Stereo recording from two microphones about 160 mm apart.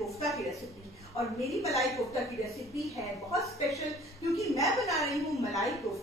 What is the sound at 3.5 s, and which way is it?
Speech, 20° left (ahead or behind).